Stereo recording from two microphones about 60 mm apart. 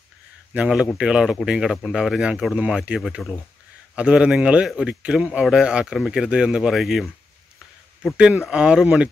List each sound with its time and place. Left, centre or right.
0.6 s speech: centre
2.5 s speech: centre
3.2 s speech: centre
3.9 s a man's voice: centre
6.7 s speech: centre
8.2 s speech: centre